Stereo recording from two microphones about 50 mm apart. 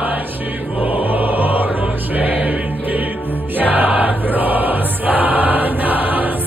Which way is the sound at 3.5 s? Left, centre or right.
Right.